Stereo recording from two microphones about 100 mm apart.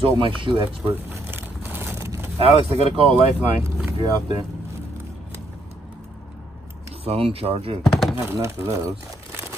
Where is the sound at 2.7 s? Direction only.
80° right.